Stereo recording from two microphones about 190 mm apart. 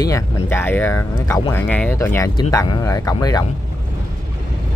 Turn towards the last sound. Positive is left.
turn(degrees=20)  # may be behind; listen again after turning